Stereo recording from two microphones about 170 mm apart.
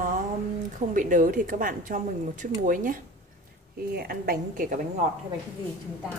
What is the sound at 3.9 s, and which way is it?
A woman's voice, 65° right (ahead or behind).